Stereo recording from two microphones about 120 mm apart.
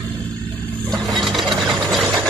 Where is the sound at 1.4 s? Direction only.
40° right (ahead or behind).